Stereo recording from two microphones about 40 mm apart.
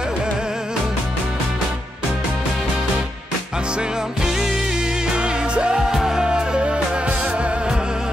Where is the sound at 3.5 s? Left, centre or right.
Right.